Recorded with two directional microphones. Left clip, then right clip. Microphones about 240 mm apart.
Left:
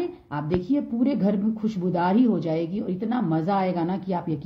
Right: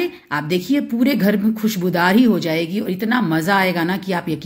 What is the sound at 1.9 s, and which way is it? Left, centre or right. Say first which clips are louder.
A woman's voice: right 7 dB; centre.